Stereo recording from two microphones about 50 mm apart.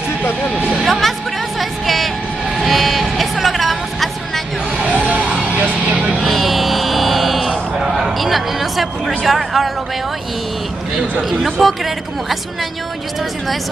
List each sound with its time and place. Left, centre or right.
0.8 s music: centre
1.6 s a sound: centre
2.5 s vehicle: centre
4.7 s music: right
6.2 s a sound: centre
9.2 s speech: centre
11.1 s speech: centre